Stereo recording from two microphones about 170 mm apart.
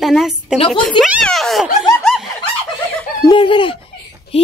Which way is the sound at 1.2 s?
Centre (ahead or behind).